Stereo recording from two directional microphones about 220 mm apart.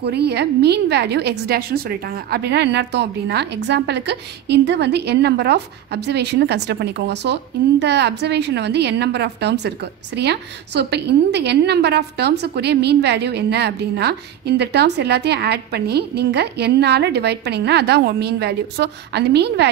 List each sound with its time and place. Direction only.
0.0 s a woman's voice: 50° right (ahead or behind)